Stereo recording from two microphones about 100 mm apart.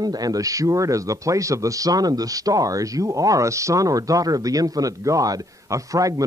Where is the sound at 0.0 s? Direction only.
40° right (ahead or behind).